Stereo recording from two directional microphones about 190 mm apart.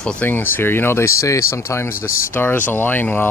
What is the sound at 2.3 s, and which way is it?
Speech, 10° left (ahead or behind).